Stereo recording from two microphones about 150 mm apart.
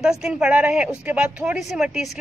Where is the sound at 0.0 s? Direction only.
5° right (ahead or behind).